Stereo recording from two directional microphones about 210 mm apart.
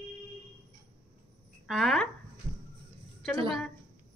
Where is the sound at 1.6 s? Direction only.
Centre (ahead or behind).